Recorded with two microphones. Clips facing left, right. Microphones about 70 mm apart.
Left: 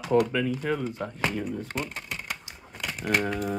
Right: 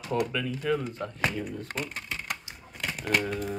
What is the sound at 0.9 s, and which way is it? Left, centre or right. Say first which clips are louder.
Speech: left 1 dB; centre.